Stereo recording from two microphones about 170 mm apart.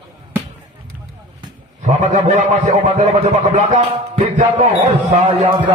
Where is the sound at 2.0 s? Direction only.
45° right (ahead or behind).